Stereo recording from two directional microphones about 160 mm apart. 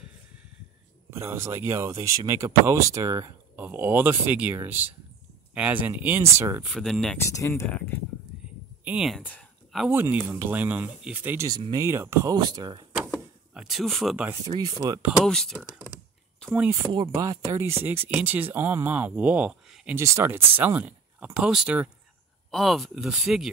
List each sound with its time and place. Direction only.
1.1 s speech: 15° right (ahead or behind)
6.7 s speech: 5° left (ahead or behind)
7.2 s speech: 20° left (ahead or behind)
8.3 s a sound: 5° right (ahead or behind)
8.8 s speech: 5° right (ahead or behind)
11.4 s speech: 25° right (ahead or behind)
12.4 s speech: 25° right (ahead or behind)
13.6 s speech: centre (ahead or behind)
14.6 s speech: 20° right (ahead or behind)
15.2 s speech: 5° left (ahead or behind)
16.5 s speech: 10° right (ahead or behind)
16.9 s speech: 25° right (ahead or behind); by 23.5 s 5° right (ahead or behind)